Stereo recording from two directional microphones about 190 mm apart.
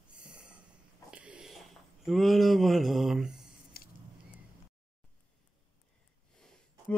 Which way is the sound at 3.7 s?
50° left (ahead or behind).